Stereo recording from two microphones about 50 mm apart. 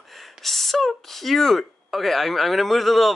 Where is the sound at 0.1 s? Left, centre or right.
Centre.